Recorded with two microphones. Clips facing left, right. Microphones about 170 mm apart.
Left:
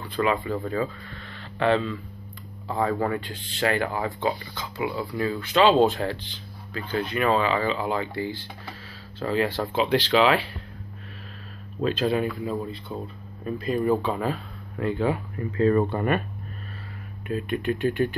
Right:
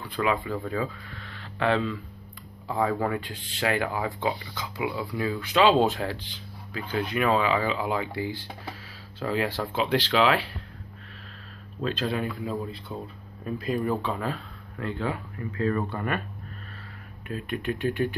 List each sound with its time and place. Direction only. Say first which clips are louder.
0.1 s speech: left 2 dB; 5° right (ahead or behind)
11.8 s speech: left 5 dB; 5° left (ahead or behind)
15.5 s speech: left 6 dB; 30° left (ahead or behind)
17.3 s speech: left 4 dB; centre (ahead or behind)